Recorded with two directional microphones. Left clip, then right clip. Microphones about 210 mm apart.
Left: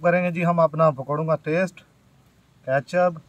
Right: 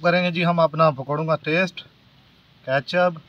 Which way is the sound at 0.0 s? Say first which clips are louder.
Right 1 dB; 15° left (ahead or behind).